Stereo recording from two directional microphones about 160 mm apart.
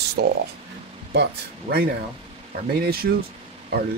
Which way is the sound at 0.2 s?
75° right (ahead or behind).